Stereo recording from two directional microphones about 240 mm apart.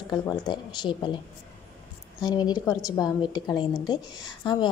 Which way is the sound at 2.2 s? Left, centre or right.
Centre.